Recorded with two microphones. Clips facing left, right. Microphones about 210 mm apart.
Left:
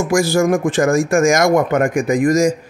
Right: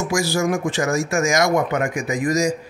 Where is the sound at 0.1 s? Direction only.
50° left (ahead or behind).